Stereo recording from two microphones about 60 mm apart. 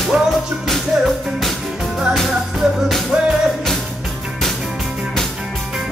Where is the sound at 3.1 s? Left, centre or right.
Centre.